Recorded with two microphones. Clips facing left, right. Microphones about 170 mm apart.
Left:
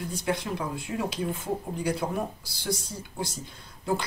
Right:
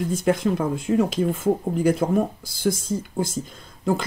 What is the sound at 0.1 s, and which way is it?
Speech, 50° right (ahead or behind).